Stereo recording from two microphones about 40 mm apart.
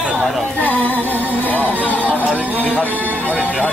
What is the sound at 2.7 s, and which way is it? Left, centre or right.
Speech, left.